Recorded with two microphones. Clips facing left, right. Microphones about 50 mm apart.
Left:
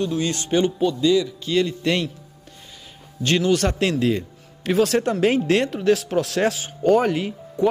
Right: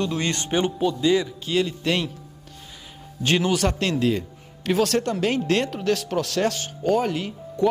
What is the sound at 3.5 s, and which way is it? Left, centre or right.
Speech, centre.